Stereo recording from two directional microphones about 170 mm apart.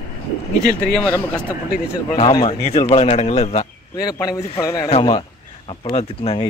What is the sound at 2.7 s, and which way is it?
Speech, 40° left (ahead or behind).